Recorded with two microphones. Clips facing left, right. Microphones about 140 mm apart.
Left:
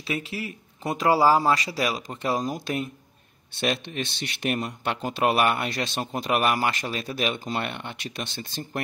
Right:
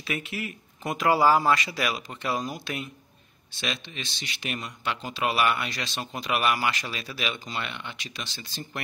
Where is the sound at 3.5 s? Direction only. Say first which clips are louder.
Left 7 dB; 55° left (ahead or behind).